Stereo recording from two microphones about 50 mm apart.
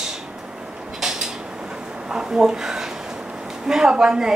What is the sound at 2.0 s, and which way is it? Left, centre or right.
Speech, centre.